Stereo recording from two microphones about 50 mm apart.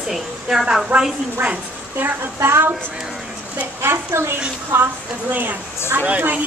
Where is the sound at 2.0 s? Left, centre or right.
Right.